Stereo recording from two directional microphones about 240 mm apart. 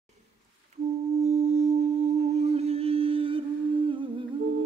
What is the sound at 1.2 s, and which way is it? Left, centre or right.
Singing bowl, right.